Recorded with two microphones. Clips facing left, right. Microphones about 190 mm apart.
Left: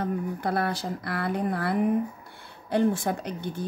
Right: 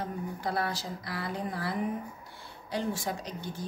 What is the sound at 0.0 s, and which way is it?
A woman's voice, 60° left (ahead or behind).